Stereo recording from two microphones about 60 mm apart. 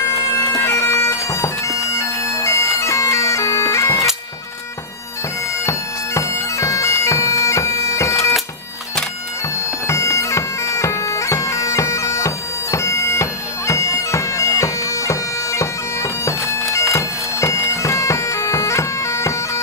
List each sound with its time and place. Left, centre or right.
0.0 s bagpipes: left
5.7 s bagpipes: left
9.8 s bagpipes: left